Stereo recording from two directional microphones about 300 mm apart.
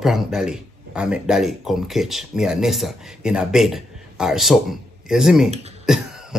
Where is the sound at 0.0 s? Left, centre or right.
Centre.